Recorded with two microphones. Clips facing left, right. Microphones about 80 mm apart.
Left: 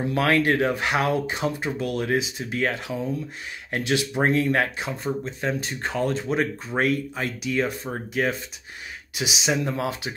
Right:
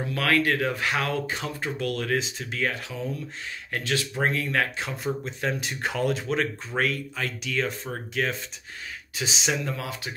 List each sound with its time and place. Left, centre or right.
0.1 s speech: left
2.1 s speech: centre
2.5 s speech: left
3.7 s speech: centre
5.1 s speech: centre
5.6 s speech: centre
6.2 s speech: centre
6.8 s speech: left
7.4 s speech: centre
9.5 s speech: left